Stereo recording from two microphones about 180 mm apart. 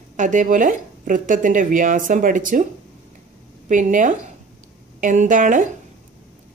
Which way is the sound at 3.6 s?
45° right (ahead or behind).